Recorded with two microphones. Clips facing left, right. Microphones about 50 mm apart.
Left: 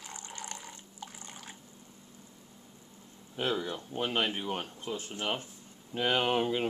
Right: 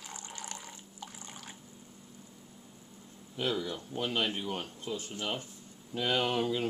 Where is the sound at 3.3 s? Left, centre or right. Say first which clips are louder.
Left 1 dB; left.